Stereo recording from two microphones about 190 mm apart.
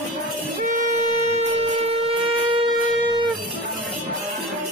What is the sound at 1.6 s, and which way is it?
Wind instrument, 30° right (ahead or behind).